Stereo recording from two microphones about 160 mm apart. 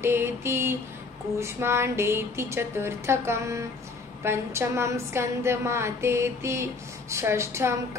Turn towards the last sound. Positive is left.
turn(degrees=-15)  # may be behind; listen again after turning